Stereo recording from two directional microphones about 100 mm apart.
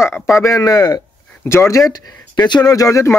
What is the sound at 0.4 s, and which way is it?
Speech, 30° left (ahead or behind).